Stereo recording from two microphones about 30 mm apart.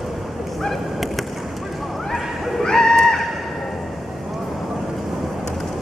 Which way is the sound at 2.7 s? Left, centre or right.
Centre.